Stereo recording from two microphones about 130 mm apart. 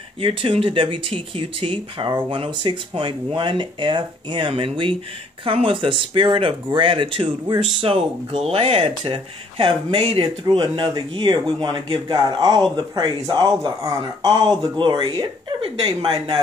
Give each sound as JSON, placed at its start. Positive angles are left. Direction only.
{"t": 0.2, "sound": "speech", "side_deg": -40}
{"t": 10.4, "sound": "speech", "side_deg": -35}